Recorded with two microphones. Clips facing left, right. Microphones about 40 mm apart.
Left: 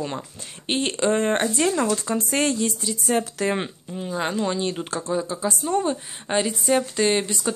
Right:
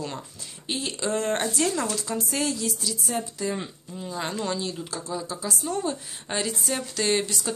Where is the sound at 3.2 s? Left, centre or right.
Left.